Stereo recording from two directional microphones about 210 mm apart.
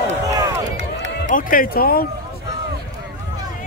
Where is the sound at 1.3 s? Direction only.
40° left (ahead or behind).